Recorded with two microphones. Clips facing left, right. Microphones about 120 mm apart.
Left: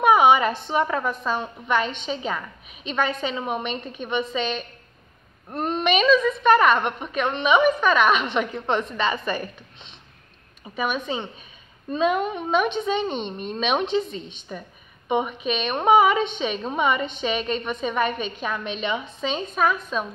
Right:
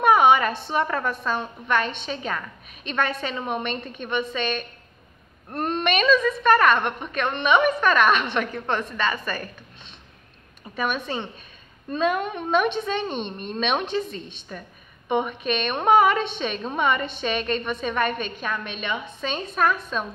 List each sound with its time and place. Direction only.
0.0 s a woman's voice: 10° left (ahead or behind)
10.8 s a woman's voice: 10° left (ahead or behind)
18.4 s a woman's voice: 20° left (ahead or behind)
19.3 s a woman's voice: 5° left (ahead or behind)